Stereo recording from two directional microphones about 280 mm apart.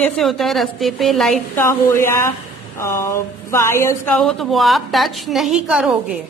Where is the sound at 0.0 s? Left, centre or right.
Centre.